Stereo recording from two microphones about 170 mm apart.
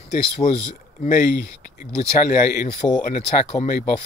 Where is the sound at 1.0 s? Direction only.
55° left (ahead or behind).